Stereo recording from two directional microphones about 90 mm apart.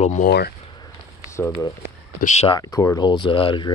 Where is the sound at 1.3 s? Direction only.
35° left (ahead or behind).